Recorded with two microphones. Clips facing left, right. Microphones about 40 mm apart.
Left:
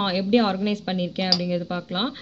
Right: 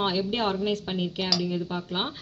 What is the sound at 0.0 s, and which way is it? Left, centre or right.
Speech, left.